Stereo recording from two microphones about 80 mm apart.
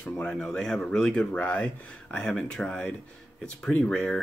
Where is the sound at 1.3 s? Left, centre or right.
Centre.